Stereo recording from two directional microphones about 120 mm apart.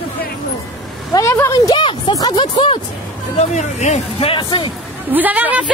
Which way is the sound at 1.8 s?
45° left (ahead or behind).